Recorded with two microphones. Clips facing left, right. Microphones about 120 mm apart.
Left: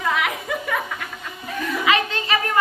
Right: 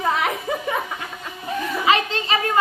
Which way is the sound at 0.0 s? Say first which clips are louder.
Right 2 dB; 35° right (ahead or behind).